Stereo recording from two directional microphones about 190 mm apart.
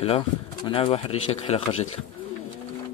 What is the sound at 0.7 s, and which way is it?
Speech, 30° left (ahead or behind).